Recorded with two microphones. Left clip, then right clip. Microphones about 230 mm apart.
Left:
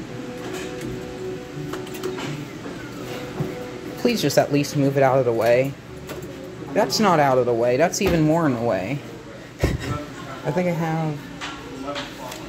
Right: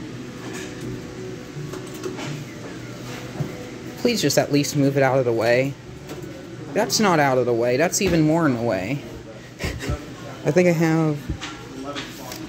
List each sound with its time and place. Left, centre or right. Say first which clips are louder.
4.0 s speech: left 1 dB; centre
6.7 s speech: left 1 dB; centre
10.4 s speech: right 5 dB; right